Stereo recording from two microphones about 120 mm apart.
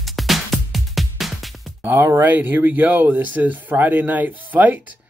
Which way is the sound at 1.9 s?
20° right (ahead or behind).